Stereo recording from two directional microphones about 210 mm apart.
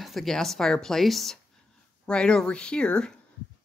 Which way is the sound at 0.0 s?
Centre (ahead or behind).